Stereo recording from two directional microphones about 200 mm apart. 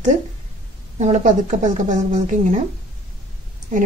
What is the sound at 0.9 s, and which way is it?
A woman's voice, 35° right (ahead or behind).